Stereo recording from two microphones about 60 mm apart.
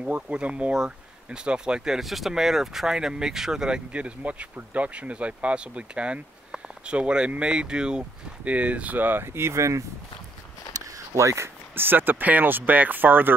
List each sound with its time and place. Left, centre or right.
0.1 s speech: centre; by 9.8 s right
11.1 s speech: right
11.7 s speech: right